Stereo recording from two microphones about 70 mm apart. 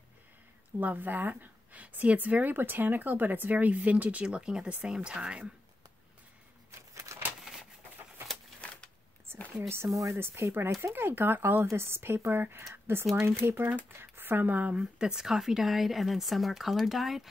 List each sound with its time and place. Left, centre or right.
0.7 s speech: right
7.1 s a sound: right
9.6 s a woman's voice: right
14.8 s speech: centre